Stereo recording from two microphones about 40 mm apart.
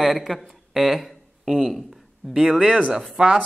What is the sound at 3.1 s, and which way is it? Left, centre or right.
Speech, centre.